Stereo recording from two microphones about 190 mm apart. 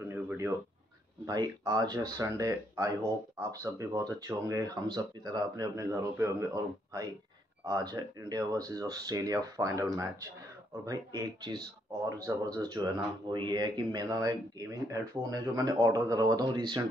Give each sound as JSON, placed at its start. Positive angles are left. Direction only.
{"t": 0.1, "sound": "a sound", "side_deg": -10}
{"t": 1.2, "sound": "speech", "side_deg": -20}
{"t": 10.9, "sound": "speech", "side_deg": -15}